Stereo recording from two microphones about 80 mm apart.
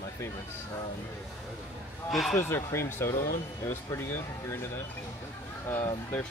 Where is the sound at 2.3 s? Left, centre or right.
Left.